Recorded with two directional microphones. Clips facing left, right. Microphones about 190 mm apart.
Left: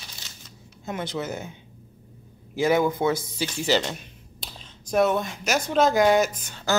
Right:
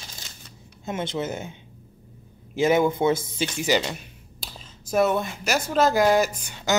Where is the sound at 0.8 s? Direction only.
25° right (ahead or behind).